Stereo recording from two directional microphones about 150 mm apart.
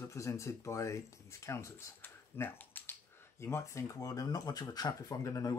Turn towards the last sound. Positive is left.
turn(degrees=20)  # may be behind; listen again after turning